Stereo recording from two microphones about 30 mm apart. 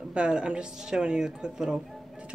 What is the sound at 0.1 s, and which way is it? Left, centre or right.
A woman's voice, right.